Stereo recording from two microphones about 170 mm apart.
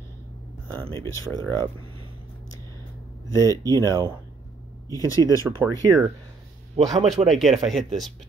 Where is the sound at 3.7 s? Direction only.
15° left (ahead or behind).